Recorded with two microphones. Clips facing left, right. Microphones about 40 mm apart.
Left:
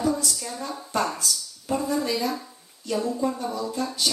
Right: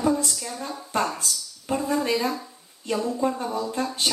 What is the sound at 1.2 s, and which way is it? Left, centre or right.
Speech, right.